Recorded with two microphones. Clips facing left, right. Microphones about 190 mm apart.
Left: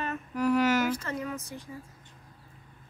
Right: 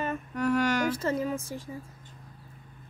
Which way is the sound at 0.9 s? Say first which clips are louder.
Right 5 dB; 30° right (ahead or behind).